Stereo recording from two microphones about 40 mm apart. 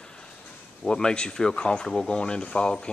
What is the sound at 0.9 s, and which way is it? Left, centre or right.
Speech, left.